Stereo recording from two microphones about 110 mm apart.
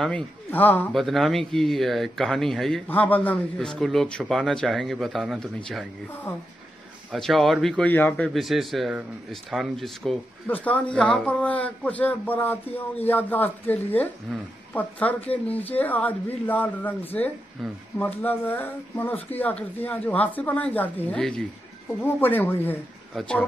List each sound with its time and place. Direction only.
0.0 s speech: 15° left (ahead or behind)
0.9 s a man's voice: centre (ahead or behind)
2.9 s a man's voice: 15° left (ahead or behind)
7.1 s a man's voice: centre (ahead or behind)
7.8 s speech: 15° left (ahead or behind)
8.3 s a man's voice: centre (ahead or behind); by 13.7 s 15° left (ahead or behind)
14.3 s a man's voice: 5° left (ahead or behind)
22.0 s speech: 15° left (ahead or behind)